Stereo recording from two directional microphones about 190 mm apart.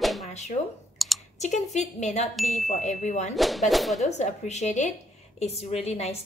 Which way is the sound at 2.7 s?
40° left (ahead or behind).